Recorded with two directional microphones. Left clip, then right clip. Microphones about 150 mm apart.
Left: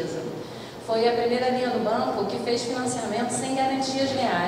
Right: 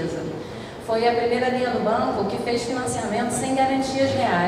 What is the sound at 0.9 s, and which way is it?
A woman's voice, 35° left (ahead or behind).